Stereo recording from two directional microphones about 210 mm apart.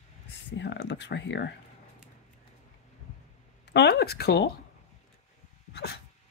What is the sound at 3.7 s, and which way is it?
Speech, 55° left (ahead or behind).